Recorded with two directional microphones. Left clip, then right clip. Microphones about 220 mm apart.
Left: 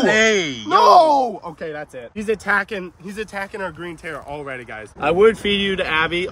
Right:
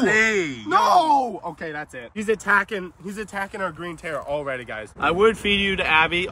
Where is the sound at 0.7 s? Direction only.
25° left (ahead or behind); by 4.8 s centre (ahead or behind).